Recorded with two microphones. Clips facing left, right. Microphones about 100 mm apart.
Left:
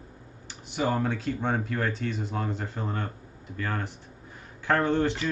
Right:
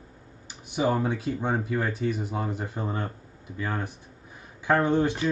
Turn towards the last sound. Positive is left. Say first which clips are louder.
# right 2 dB
turn(degrees=-15)  # may be behind; listen again after turning